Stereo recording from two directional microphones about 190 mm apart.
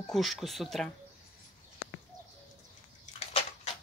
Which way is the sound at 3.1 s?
35° left (ahead or behind).